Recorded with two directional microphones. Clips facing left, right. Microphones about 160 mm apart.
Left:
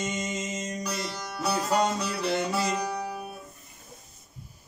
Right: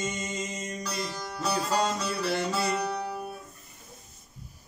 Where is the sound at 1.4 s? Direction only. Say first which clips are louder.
Left 2 dB; 20° left (ahead or behind).